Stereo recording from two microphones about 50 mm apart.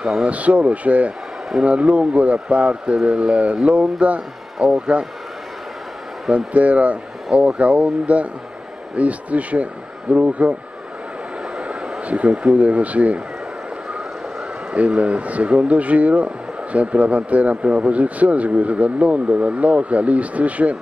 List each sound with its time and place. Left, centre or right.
0.2 s speech: right
3.0 s speech: centre
3.3 s speech: right
6.3 s speech: right
11.5 s a sound: right
12.5 s speech: right
14.7 s speech: right